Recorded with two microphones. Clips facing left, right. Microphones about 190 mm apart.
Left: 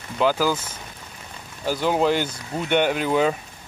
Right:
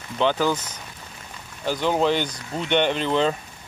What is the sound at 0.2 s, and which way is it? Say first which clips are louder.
Speech: left 1 dB; 5° left (ahead or behind).